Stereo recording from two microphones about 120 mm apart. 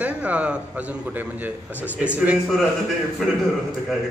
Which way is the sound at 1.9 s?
10° right (ahead or behind).